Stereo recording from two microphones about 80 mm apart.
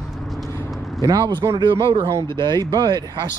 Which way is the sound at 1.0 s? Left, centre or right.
Right.